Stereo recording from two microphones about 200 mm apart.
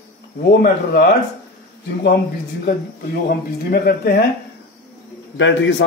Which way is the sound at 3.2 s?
50° left (ahead or behind).